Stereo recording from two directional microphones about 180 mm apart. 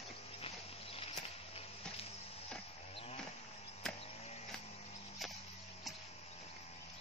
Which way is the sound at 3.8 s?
5° left (ahead or behind).